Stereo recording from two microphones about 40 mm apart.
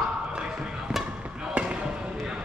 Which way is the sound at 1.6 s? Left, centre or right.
Right.